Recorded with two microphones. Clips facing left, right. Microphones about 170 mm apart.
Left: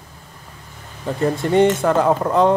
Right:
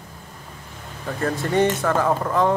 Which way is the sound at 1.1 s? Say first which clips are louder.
Left 5 dB; 20° left (ahead or behind).